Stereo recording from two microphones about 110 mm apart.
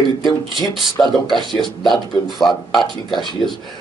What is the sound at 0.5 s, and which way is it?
Speech, centre (ahead or behind).